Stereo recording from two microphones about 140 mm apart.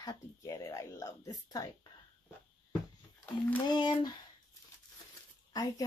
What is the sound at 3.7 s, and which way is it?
Speech, 30° left (ahead or behind).